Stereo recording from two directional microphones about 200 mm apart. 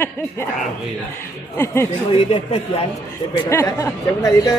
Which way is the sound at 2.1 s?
30° left (ahead or behind).